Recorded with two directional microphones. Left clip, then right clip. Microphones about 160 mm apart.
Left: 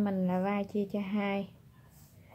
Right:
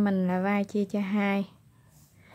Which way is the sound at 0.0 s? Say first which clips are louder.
Right 4 dB; 40° right (ahead or behind).